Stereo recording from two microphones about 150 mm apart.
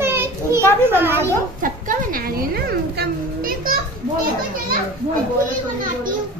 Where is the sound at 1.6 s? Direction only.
65° right (ahead or behind).